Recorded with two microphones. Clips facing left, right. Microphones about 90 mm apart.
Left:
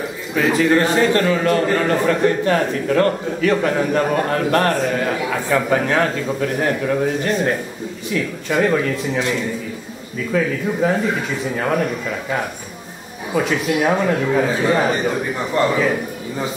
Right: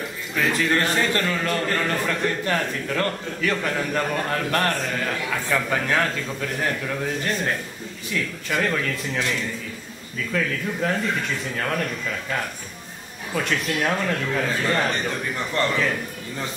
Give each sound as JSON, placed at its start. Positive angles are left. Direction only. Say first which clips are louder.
{"t": 0.3, "sound": "a man's voice", "louder": "left 7 dB", "side_deg": 5}